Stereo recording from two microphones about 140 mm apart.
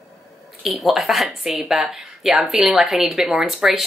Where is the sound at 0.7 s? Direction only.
Centre (ahead or behind).